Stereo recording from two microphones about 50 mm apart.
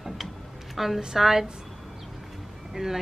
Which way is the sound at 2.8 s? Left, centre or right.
Centre.